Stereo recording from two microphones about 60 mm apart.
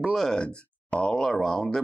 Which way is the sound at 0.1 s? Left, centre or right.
Centre.